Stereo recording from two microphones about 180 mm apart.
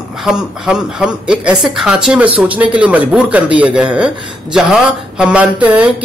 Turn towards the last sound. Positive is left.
turn(degrees=-5)  # may be behind; listen again after turning